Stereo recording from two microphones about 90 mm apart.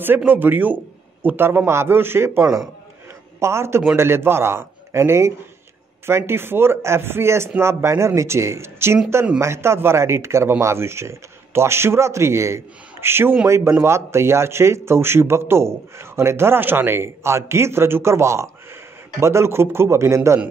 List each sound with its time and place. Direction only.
0.3 s a man's voice: 20° right (ahead or behind)